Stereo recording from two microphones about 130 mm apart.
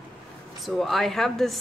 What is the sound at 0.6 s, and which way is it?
Speech, centre (ahead or behind).